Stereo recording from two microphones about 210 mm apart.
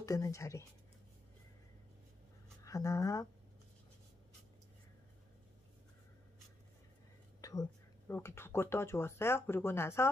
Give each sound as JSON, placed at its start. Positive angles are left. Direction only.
{"t": 0.0, "sound": "speech", "side_deg": 15}
{"t": 2.6, "sound": "speech", "side_deg": 15}
{"t": 7.4, "sound": "a sound", "side_deg": 15}
{"t": 8.1, "sound": "speech", "side_deg": 10}